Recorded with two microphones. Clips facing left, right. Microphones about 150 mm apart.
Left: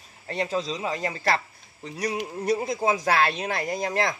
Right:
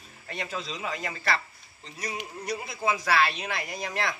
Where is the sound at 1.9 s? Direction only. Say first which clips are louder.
Left 8 dB; 65° left (ahead or behind).